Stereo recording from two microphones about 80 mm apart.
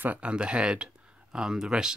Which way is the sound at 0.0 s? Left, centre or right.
Centre.